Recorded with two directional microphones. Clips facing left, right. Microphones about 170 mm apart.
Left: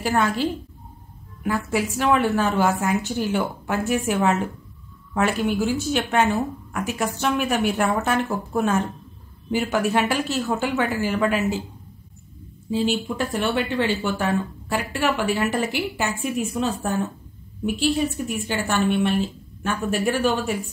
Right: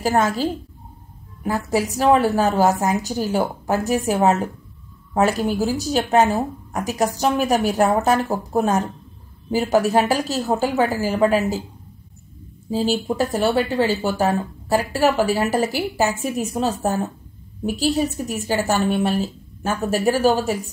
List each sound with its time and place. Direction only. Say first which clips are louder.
0.0 s speech: right 2 dB; 40° right (ahead or behind)
12.7 s speech: right 3 dB; 40° right (ahead or behind)